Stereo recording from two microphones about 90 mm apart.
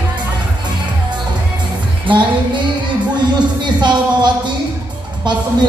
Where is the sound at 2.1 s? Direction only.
60° right (ahead or behind).